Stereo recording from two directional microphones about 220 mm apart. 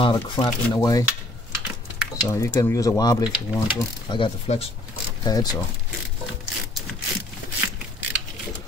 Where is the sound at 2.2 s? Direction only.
15° left (ahead or behind).